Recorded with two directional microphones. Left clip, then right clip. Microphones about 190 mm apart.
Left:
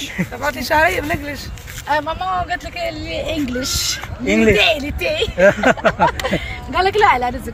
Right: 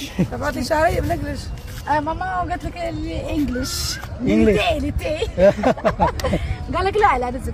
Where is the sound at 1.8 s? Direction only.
50° left (ahead or behind).